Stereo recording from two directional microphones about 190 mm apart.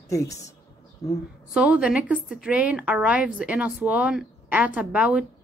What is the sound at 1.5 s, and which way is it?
A woman's voice, 5° right (ahead or behind).